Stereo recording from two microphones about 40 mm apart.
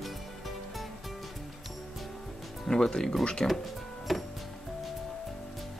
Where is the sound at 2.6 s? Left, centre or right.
Centre.